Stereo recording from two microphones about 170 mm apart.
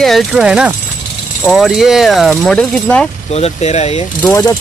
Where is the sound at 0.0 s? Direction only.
Centre (ahead or behind).